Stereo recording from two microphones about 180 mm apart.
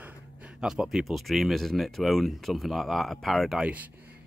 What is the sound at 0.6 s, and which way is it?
Speech, 5° right (ahead or behind).